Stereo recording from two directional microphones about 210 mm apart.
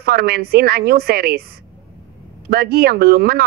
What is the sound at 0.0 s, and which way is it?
A woman's voice, 45° right (ahead or behind).